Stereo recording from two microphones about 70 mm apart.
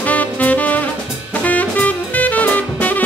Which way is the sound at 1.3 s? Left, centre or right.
Left.